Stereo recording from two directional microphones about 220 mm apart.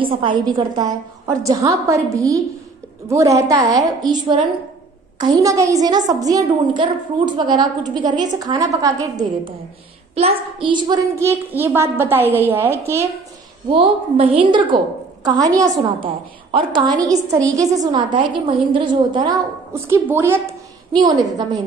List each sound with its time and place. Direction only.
0.0 s a woman's voice: 20° right (ahead or behind)
13.7 s a woman's voice: 25° right (ahead or behind)